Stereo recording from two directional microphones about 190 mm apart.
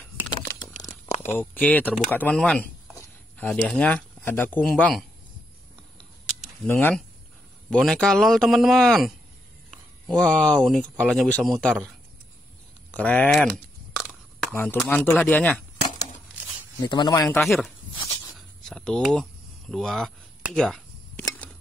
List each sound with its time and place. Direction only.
0.3 s crumpling: 20° left (ahead or behind)
0.7 s a sound: 40° left (ahead or behind)
1.2 s speech: 10° left (ahead or behind)
5.9 s scissors: centre (ahead or behind)
6.7 s speech: 10° left (ahead or behind)
13.9 s a sound: centre (ahead or behind)
14.5 s speech: 10° left (ahead or behind)
16.8 s a man's voice: 25° left (ahead or behind)
17.4 s speech: centre (ahead or behind)
18.3 s a sound: centre (ahead or behind)